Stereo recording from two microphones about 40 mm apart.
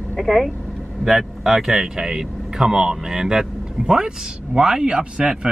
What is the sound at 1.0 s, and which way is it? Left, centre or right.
Speech, centre.